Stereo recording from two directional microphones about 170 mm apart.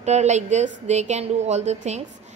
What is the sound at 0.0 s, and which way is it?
A woman's voice, 40° right (ahead or behind).